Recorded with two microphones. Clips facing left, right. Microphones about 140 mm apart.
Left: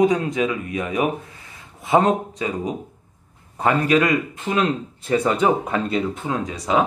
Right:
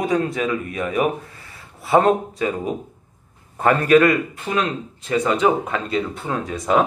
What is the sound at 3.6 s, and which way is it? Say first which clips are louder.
A man's voice: right 4 dB; 15° left (ahead or behind).